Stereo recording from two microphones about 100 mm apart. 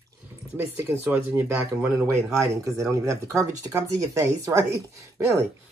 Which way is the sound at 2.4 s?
35° right (ahead or behind).